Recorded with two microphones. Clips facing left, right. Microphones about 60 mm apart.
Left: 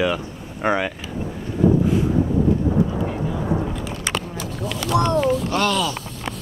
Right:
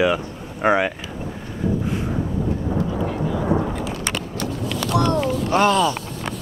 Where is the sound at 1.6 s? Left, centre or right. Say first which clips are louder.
Left 6 dB; centre.